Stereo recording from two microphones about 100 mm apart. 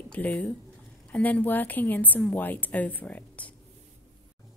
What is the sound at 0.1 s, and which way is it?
Speech, 10° left (ahead or behind).